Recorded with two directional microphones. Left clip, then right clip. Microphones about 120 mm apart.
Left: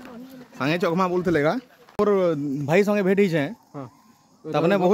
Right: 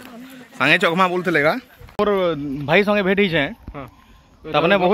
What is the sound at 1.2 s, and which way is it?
Speech, 25° left (ahead or behind).